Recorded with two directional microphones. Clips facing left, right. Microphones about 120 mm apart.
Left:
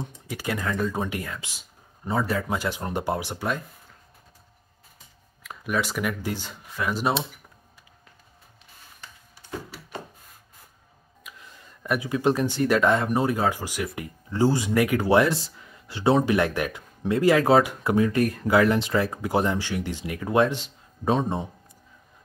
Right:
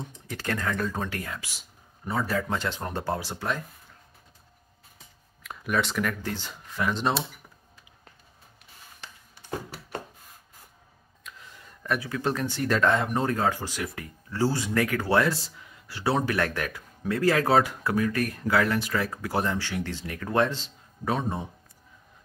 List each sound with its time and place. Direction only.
0.0 s speech: 10° left (ahead or behind)
5.4 s speech: centre (ahead or behind)
11.3 s a sound: 5° left (ahead or behind)
11.8 s speech: 15° left (ahead or behind)